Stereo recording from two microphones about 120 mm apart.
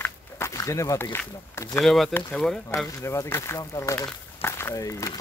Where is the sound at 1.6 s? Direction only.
25° left (ahead or behind).